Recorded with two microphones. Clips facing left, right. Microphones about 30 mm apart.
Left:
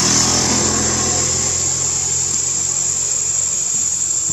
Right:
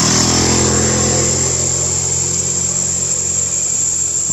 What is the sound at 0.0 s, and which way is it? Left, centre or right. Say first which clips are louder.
Vehicle: right 3 dB; centre.